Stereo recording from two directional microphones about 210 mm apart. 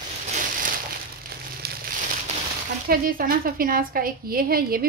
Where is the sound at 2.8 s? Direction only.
45° right (ahead or behind).